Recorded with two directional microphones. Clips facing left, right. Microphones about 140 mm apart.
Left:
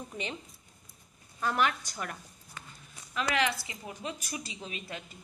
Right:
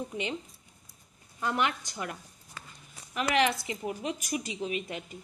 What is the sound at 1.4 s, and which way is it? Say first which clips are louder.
Speech: even; 20° right (ahead or behind).